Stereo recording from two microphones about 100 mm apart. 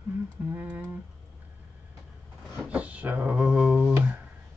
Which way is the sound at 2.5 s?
15° right (ahead or behind).